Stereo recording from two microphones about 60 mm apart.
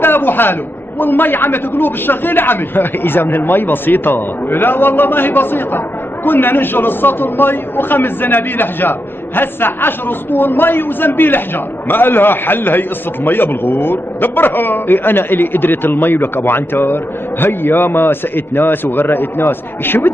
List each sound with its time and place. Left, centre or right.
0.0 s a man's voice: left